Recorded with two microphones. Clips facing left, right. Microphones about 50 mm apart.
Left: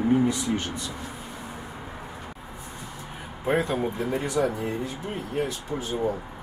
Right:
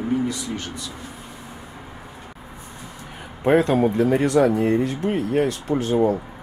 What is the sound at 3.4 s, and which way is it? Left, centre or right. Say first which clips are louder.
Speech: right 8 dB; right.